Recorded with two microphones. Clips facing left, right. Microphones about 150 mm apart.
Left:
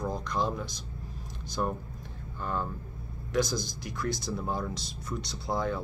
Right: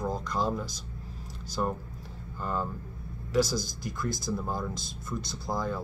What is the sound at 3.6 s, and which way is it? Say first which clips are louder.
Speech: right 2 dB; 60° left (ahead or behind).